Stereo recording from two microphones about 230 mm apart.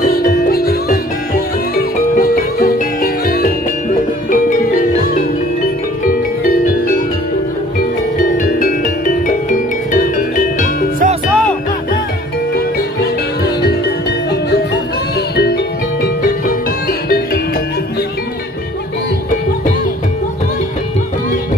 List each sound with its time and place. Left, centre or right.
0.1 s music: left
8.4 s music: left
11.2 s music: centre
15.3 s music: left